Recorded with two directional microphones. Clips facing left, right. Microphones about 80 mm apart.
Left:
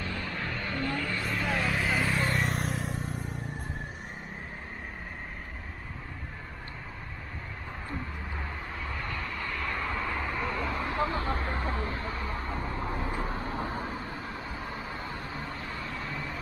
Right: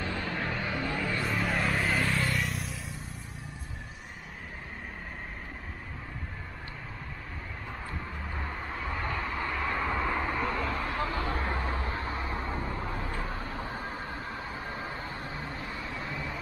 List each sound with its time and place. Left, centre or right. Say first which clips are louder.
0.2 s vehicle: right 2 dB; centre
2.2 s vehicle: left 3 dB; left
8.4 s vehicle: right 3 dB; centre
10.8 s vehicle: left 2 dB; left
11.7 s a sound: even; right
12.4 s vehicle: even; centre
13.0 s vehicle: left 2 dB; left
14.3 s vehicle: even; right
15.4 s vehicle: even; left
16.0 s vehicle: even; centre